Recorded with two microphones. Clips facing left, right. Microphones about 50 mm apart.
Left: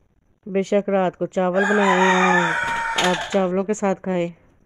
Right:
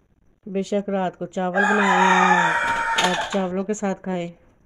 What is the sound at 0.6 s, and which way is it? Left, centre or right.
Speech, left.